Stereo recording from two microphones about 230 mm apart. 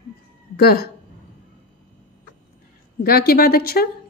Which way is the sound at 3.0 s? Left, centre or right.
Left.